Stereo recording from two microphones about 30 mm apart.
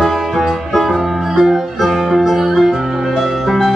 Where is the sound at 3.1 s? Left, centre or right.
Centre.